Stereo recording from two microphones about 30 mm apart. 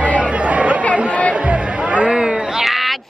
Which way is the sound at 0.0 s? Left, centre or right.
Right.